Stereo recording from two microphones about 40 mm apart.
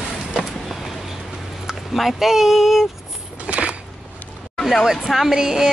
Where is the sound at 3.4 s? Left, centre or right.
Right.